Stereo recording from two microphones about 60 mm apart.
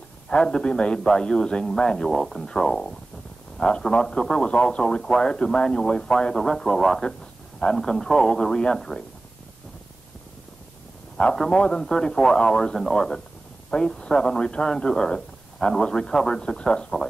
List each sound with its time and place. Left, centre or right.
0.3 s a man's voice: centre
11.3 s speech: centre